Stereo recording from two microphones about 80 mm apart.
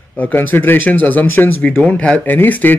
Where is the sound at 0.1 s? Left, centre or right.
Left.